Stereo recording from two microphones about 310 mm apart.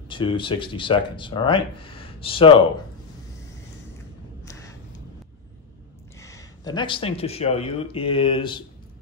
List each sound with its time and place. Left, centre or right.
0.1 s speech: centre
4.5 s a sound: centre
6.1 s speech: centre